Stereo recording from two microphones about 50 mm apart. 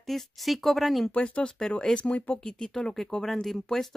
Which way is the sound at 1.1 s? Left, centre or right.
Left.